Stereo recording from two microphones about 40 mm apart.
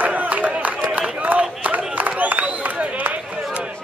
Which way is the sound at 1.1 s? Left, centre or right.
Right.